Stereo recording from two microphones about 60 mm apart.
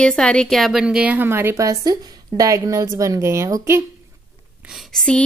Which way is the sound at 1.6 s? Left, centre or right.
Right.